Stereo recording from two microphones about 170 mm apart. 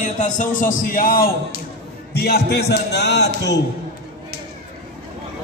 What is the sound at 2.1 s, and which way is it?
Speech, 70° left (ahead or behind).